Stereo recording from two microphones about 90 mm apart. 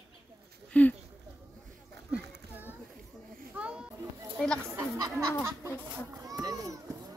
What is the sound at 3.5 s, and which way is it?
Children playing, 10° right (ahead or behind).